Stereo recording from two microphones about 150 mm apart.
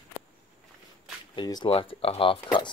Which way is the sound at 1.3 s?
30° left (ahead or behind).